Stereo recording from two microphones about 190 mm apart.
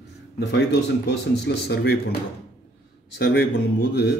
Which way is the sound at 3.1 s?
60° left (ahead or behind).